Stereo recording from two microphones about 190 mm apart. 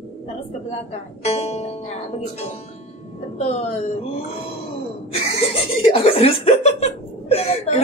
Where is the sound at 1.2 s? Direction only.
35° left (ahead or behind).